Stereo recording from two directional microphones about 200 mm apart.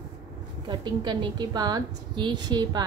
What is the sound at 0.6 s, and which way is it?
A woman's voice, 25° right (ahead or behind).